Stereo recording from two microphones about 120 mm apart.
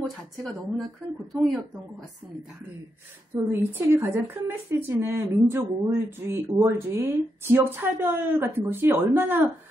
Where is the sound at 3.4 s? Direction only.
20° right (ahead or behind).